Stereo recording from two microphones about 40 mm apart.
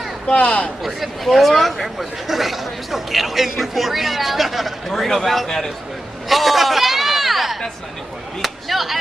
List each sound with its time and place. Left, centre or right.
0.3 s speech: left
0.8 s speech: centre
6.2 s a sound: centre
8.4 s chop: centre